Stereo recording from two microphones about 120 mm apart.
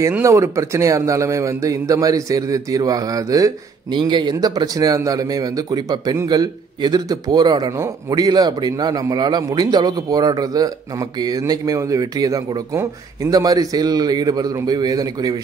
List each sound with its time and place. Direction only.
0.2 s a man's voice: 25° right (ahead or behind)